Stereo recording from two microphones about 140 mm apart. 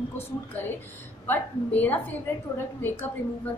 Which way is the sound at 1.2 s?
15° left (ahead or behind).